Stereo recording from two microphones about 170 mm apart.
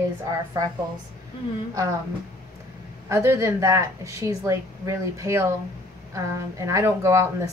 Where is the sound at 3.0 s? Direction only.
15° right (ahead or behind).